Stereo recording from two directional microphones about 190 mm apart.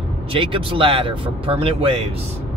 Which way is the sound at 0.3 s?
30° right (ahead or behind).